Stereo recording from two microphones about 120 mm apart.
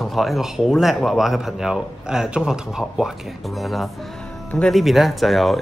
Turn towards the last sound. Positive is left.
turn(degrees=0)  # may be behind; listen again after turning